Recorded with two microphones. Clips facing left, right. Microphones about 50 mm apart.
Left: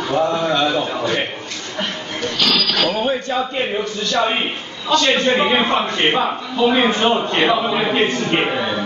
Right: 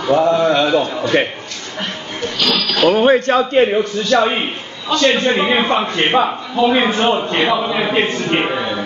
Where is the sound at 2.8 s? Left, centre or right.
Right.